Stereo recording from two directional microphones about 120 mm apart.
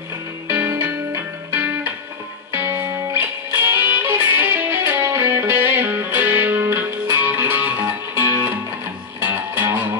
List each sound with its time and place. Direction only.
0.5 s music: 20° right (ahead or behind)